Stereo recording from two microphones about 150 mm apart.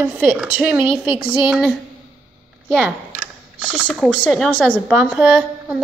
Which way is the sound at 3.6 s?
5° right (ahead or behind).